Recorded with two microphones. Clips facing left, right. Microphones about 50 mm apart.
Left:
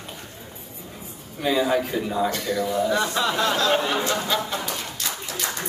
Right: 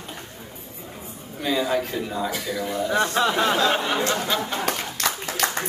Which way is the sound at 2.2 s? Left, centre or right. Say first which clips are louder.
Left 3 dB; centre.